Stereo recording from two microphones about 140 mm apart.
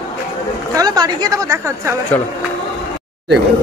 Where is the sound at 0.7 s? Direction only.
30° right (ahead or behind).